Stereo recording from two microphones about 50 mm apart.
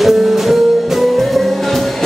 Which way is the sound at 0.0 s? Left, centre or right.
Centre.